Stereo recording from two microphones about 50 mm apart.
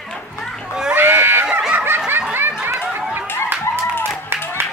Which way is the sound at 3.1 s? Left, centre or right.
Right.